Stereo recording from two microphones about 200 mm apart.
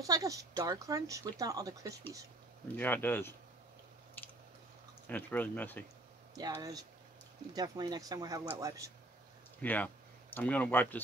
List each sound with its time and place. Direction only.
0.0 s speech: 15° right (ahead or behind)
2.7 s speech: 10° left (ahead or behind)
5.0 s speech: 10° left (ahead or behind)
6.3 s speech: 20° right (ahead or behind)
9.6 s speech: 10° left (ahead or behind)